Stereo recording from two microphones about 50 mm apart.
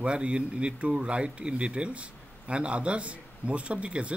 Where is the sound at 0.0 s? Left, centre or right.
Right.